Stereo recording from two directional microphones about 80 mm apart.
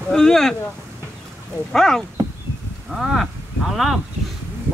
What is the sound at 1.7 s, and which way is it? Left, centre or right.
Speech, centre.